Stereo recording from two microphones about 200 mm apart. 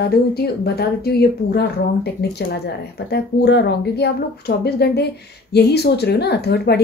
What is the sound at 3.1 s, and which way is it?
Speech, 55° left (ahead or behind).